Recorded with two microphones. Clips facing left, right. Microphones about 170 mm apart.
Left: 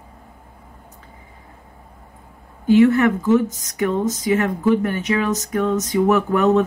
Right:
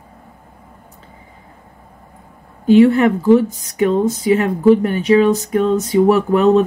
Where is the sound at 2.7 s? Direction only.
30° right (ahead or behind).